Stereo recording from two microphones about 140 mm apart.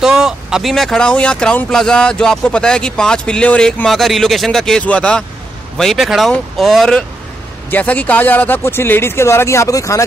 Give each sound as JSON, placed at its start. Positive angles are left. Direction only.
{"t": 0.0, "sound": "speech", "side_deg": -5}